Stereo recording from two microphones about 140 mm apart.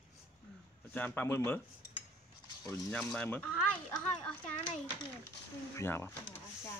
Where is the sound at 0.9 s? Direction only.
10° left (ahead or behind).